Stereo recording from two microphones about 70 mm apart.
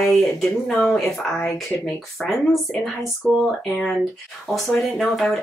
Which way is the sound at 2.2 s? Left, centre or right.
Centre.